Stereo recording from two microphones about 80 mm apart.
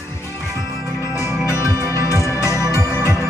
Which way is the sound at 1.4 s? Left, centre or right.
Left.